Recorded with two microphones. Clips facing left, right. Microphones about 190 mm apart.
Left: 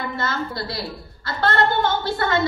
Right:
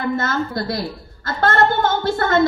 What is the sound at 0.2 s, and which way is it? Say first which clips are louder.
A woman's voice: right 4 dB; 45° right (ahead or behind).